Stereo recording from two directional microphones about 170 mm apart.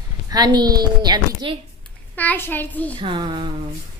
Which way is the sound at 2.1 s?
10° left (ahead or behind).